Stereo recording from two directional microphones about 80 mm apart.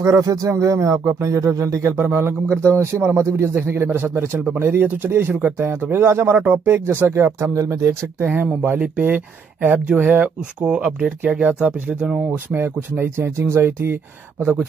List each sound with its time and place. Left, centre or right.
0.0 s speech: right
8.2 s speech: centre
12.3 s speech: right